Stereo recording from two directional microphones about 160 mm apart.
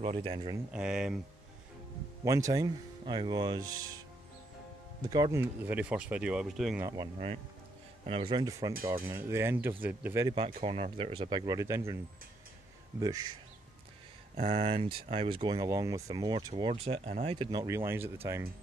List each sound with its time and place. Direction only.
0.0 s speech: 40° right (ahead or behind)
0.7 s speech: 5° right (ahead or behind)
2.2 s speech: 20° right (ahead or behind)
5.0 s speech: 25° right (ahead or behind); by 6.8 s centre (ahead or behind)
6.8 s speech: 20° right (ahead or behind)
8.0 s speech: 35° right (ahead or behind); by 10.3 s 15° right (ahead or behind)
10.3 s speech: 35° right (ahead or behind)
13.0 s speech: 20° right (ahead or behind)
14.3 s speech: 40° right (ahead or behind)
16.7 s speech: 40° right (ahead or behind)
17.5 s speech: 20° right (ahead or behind)